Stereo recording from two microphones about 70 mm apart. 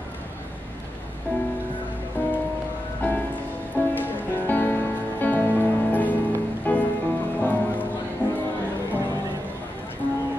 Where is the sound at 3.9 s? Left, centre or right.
Left.